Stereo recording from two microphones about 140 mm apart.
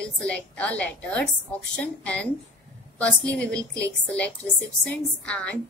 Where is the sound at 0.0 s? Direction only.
10° left (ahead or behind).